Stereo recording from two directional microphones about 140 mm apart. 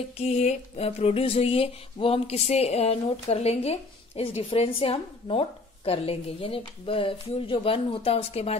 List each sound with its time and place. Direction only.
0.2 s speech: 50° left (ahead or behind)